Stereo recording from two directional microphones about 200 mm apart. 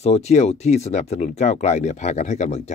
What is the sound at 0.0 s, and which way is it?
Speech, 35° left (ahead or behind).